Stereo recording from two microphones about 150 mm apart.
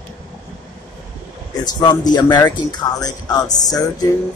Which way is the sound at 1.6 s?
25° left (ahead or behind).